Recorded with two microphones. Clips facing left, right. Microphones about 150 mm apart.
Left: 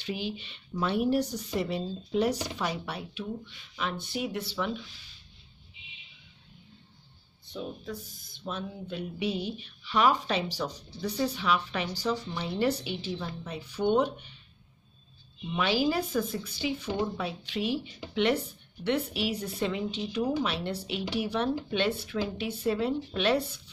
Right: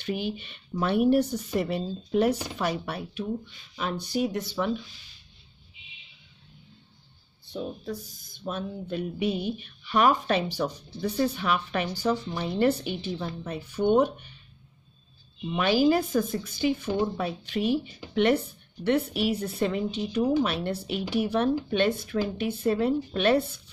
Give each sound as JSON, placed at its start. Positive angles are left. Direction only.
{"t": 0.0, "sound": "speech", "side_deg": -50}
{"t": 7.5, "sound": "speech", "side_deg": -35}
{"t": 15.5, "sound": "speech", "side_deg": -45}